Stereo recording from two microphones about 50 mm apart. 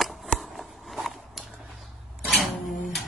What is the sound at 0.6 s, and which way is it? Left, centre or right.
Biting, centre.